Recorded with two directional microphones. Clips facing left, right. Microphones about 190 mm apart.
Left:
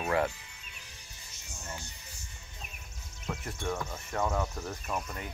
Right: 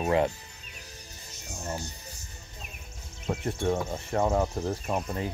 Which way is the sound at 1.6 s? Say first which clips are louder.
Right 8 dB; 40° right (ahead or behind).